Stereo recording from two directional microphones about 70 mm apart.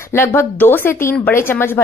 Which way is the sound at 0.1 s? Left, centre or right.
Left.